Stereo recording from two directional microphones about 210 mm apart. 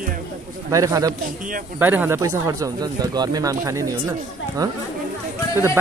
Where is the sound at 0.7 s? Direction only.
15° right (ahead or behind).